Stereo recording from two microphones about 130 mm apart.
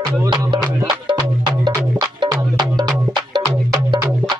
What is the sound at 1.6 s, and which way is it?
Music, 25° right (ahead or behind).